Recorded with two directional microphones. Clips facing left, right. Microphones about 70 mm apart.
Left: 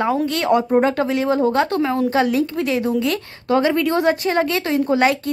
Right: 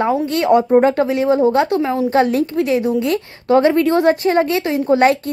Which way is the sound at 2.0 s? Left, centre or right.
Right.